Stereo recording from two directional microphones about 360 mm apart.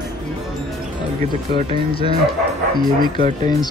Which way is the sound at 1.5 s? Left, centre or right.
Centre.